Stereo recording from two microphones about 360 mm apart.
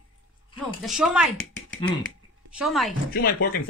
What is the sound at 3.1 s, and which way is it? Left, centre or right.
Speech, left.